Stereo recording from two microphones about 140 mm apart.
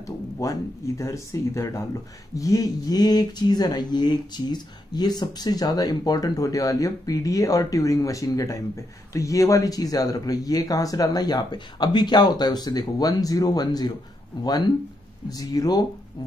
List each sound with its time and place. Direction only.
0.0 s speech: 25° left (ahead or behind)